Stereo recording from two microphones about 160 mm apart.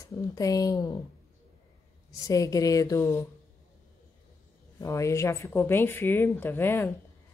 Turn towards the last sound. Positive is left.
turn(degrees=15)  # may be behind; listen again after turning